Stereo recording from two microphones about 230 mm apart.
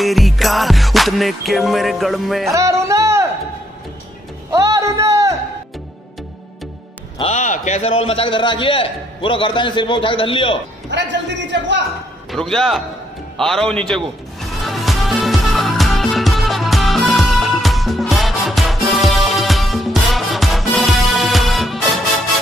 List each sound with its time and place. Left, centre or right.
0.0 s music: centre
2.5 s music: centre
4.6 s a sound: centre
7.2 s a man's voice: left
10.9 s a man's voice: right
12.3 s a man's voice: centre
13.4 s music: centre